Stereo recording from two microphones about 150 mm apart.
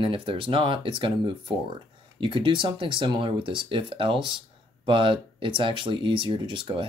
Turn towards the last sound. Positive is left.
turn(degrees=-35)  # may be behind; listen again after turning